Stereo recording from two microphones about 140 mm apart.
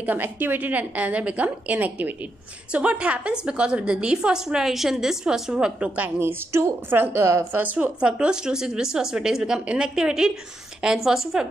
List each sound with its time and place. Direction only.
0.0 s a woman's voice: 15° right (ahead or behind)